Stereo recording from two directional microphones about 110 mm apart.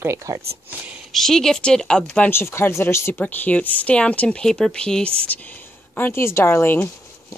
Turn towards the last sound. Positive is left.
turn(degrees=20)  # may be behind; listen again after turning